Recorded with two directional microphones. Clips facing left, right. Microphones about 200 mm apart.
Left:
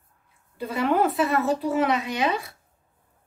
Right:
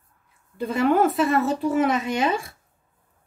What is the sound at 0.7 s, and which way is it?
A woman's voice, 45° right (ahead or behind).